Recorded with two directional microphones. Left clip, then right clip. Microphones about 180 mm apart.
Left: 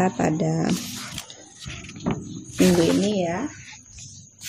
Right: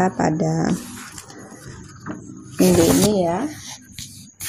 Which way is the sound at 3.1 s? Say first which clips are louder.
Right 5 dB; 20° right (ahead or behind).